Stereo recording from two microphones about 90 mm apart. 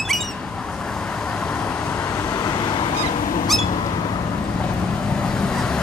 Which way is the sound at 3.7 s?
50° left (ahead or behind).